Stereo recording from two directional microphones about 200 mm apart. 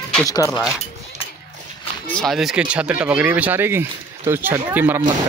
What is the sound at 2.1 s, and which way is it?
Speech, centre (ahead or behind).